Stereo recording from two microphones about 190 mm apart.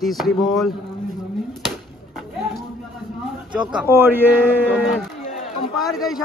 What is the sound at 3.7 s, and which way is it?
Speech, 10° right (ahead or behind).